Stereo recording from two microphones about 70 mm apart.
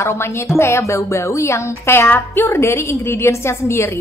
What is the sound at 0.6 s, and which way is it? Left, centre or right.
Speech, left.